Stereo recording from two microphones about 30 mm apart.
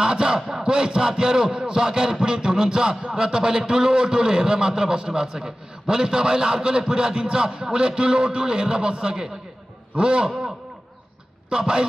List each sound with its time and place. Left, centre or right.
0.0 s crowd: right
0.7 s a man's voice: right
11.5 s a man's voice: right